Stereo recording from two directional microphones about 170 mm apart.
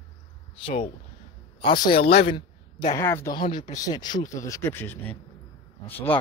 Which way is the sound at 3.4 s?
30° left (ahead or behind).